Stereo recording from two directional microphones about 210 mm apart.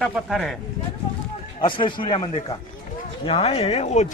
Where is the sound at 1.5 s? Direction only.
25° left (ahead or behind).